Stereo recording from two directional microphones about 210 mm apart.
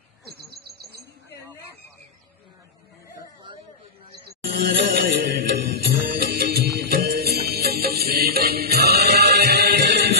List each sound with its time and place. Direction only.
0.2 s bird: 50° right (ahead or behind)
4.6 s music: 45° right (ahead or behind)